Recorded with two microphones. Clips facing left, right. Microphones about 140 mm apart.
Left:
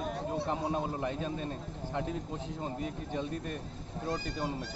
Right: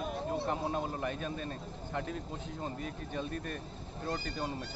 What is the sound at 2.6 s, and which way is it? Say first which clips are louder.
Speech: left 2 dB; 20° left (ahead or behind).